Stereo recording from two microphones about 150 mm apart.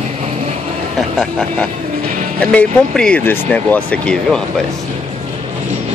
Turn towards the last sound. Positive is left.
turn(degrees=5)  # may be behind; listen again after turning